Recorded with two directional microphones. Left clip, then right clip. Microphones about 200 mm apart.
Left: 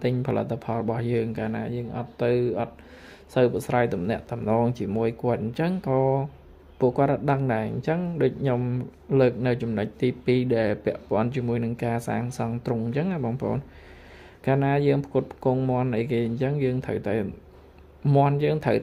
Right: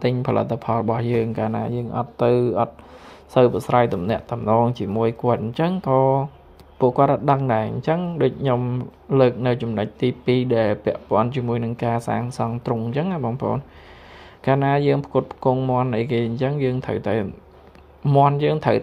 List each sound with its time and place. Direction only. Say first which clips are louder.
0.0 s speech: right 5 dB; centre (ahead or behind)
1.3 s speech: right 6 dB; 15° right (ahead or behind)
3.5 s speech: right 6 dB; centre (ahead or behind)